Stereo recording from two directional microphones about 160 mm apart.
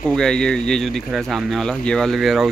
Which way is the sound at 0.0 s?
5° left (ahead or behind).